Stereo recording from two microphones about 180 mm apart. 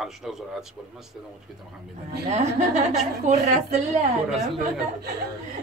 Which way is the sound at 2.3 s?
40° right (ahead or behind).